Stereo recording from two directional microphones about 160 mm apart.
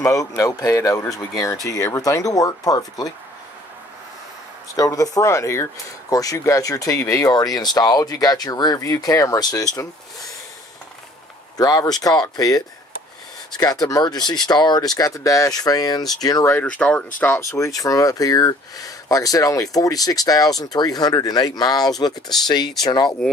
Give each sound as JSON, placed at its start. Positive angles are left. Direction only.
{"t": 0.0, "sound": "speech", "side_deg": 20}
{"t": 4.7, "sound": "speech", "side_deg": 20}
{"t": 11.5, "sound": "speech", "side_deg": 25}
{"t": 16.6, "sound": "speech", "side_deg": 5}
{"t": 17.2, "sound": "speech", "side_deg": 20}